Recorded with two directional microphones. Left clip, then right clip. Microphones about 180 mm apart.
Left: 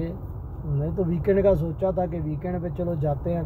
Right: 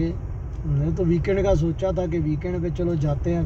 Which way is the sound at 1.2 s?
30° left (ahead or behind).